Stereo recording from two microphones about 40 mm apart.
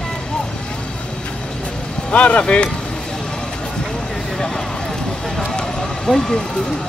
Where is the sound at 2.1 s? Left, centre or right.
Left.